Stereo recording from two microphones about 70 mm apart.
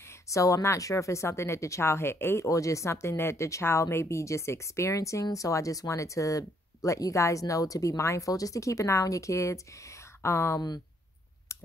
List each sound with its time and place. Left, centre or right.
0.0 s speech: left
2.4 s speech: left